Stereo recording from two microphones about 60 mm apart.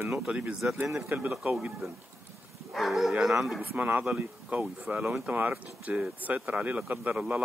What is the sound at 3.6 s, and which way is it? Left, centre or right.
Speech, right.